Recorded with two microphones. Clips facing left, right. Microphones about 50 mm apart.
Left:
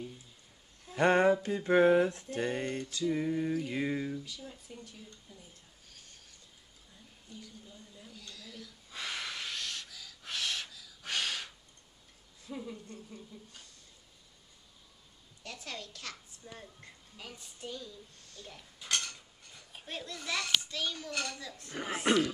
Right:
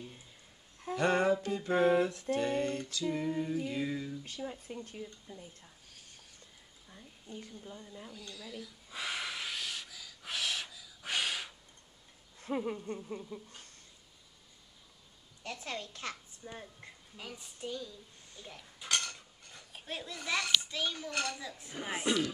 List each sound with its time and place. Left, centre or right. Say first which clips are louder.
0.9 s a sound: left 3 dB; left
4.4 s a woman's voice: right 6 dB; right
5.9 s a sound: left 3 dB; centre
6.9 s speech: right 4 dB; right
8.1 s a sound: right 1 dB; centre
12.4 s a woman's voice: right 7 dB; right
15.4 s a woman's voice: right 3 dB; right
16.8 s speech: right 2 dB; centre
18.3 s speech: even; centre
18.9 s mechanisms: right 1 dB; centre
19.7 s a sound: right 1 dB; centre
20.2 s a child's voice: right 1 dB; centre
22.1 s speech: left 4 dB; left